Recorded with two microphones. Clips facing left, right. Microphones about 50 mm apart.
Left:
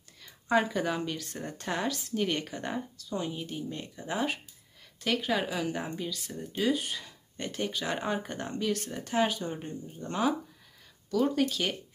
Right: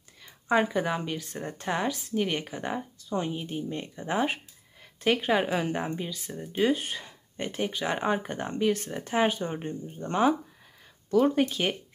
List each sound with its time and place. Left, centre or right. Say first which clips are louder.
0.2 s speech: right 2 dB; centre
3.1 s speech: right 5 dB; right
7.1 s speech: right 3 dB; centre